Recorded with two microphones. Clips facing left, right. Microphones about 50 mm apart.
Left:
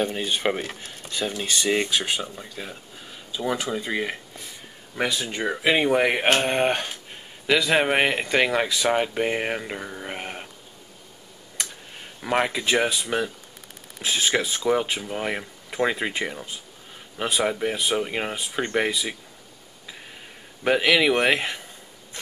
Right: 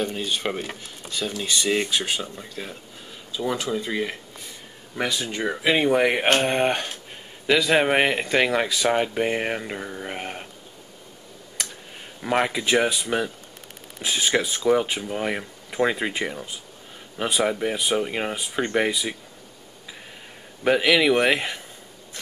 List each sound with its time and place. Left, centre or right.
0.0 s speech: left
0.7 s speech: centre
1.1 s speech: centre
12.2 s speech: centre
20.6 s speech: centre